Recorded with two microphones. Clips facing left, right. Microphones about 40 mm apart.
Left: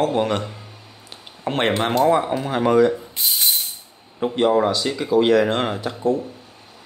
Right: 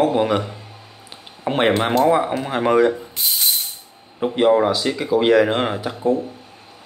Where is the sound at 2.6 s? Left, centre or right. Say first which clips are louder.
Even; right.